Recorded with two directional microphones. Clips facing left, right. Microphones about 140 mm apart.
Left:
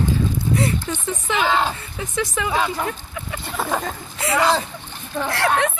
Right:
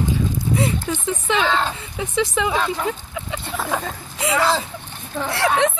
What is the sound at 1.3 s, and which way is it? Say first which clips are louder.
Speech: left 1 dB; 10° left (ahead or behind).